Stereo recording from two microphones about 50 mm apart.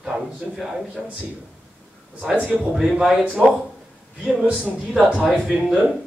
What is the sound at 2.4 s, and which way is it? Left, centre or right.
Speech, right.